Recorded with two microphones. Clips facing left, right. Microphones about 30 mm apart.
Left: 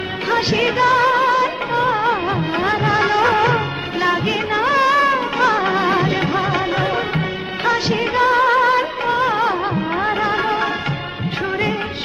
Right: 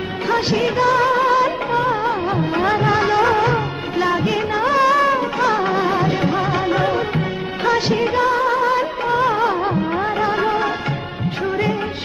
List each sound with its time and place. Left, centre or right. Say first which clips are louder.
0.9 s music: left 1 dB; centre
1.7 s music of bollywood: left 1 dB; centre
3.2 s music: left 1 dB; left
4.0 s music of bollywood: even; left
5.5 s music: left 1 dB; centre
5.8 s music: left 1 dB; left
6.0 s music of bollywood: even; centre
8.1 s music: left 6 dB; left
9.0 s music of bollywood: even; centre